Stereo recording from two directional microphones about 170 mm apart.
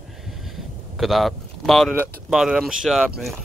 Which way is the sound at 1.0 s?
Centre (ahead or behind).